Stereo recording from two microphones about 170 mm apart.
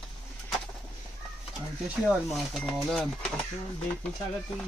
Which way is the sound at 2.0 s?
Centre (ahead or behind).